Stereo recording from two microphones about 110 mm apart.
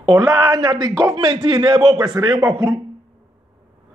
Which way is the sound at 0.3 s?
35° right (ahead or behind).